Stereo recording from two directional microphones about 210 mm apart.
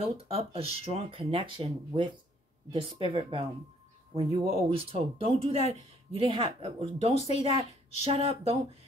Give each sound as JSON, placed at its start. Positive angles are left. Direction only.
{"t": 0.0, "sound": "speech", "side_deg": -30}
{"t": 7.2, "sound": "speech", "side_deg": 30}
{"t": 8.0, "sound": "speech", "side_deg": -30}